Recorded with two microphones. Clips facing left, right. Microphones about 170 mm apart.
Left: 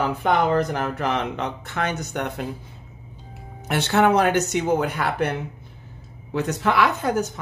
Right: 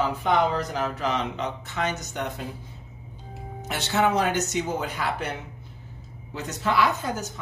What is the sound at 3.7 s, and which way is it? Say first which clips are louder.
A woman's voice: left 5 dB; 60° left (ahead or behind).